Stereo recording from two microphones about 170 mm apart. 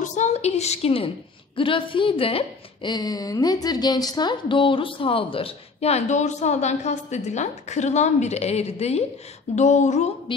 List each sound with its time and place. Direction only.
0.0 s a woman's voice: 45° left (ahead or behind)